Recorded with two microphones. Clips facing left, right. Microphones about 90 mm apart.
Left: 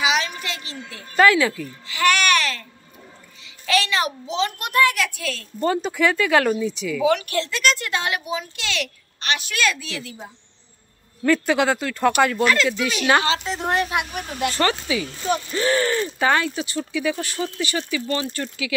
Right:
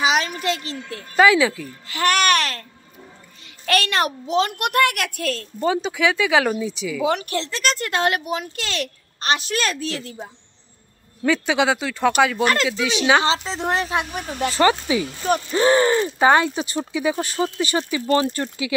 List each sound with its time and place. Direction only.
0.0 s a sound: 40° right (ahead or behind)
1.1 s speech: 5° right (ahead or behind)
1.9 s babbling: 40° right (ahead or behind)
3.6 s a child's voice: 55° right (ahead or behind)
5.6 s speech: 10° right (ahead or behind)
7.1 s a child's voice: 35° right (ahead or behind)
11.2 s speech: centre (ahead or behind)
13.5 s speech: 25° right (ahead or behind)